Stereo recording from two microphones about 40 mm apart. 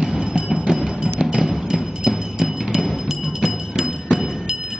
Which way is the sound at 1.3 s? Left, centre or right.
Centre.